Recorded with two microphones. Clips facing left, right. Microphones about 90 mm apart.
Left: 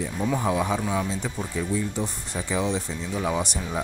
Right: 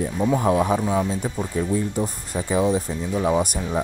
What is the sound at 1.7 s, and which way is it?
Speech, 40° right (ahead or behind).